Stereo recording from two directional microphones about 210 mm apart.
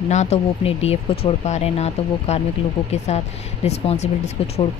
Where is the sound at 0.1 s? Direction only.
30° left (ahead or behind).